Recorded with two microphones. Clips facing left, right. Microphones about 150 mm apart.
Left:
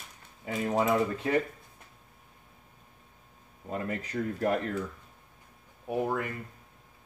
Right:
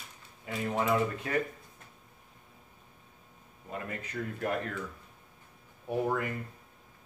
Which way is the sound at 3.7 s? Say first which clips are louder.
Left 5 dB; 35° left (ahead or behind).